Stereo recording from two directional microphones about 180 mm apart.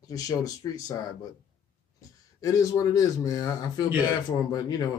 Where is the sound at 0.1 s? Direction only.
20° left (ahead or behind).